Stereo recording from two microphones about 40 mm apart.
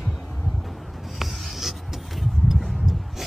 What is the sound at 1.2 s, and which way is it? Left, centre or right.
Writing, centre.